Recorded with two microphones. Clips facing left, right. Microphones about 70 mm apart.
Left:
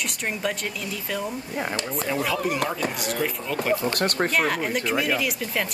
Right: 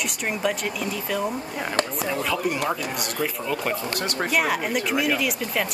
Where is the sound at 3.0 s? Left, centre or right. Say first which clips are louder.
Even; centre.